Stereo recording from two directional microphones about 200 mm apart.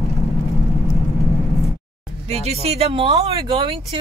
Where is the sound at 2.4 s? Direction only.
30° right (ahead or behind).